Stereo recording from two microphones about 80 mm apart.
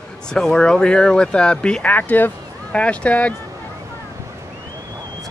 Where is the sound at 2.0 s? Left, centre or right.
Left.